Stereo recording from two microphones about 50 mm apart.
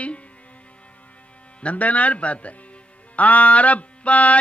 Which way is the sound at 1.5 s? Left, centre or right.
Left.